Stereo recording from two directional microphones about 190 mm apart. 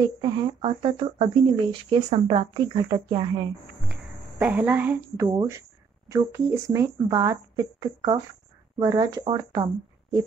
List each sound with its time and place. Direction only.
0.2 s speech: 25° right (ahead or behind)
3.9 s a woman's voice: 10° right (ahead or behind)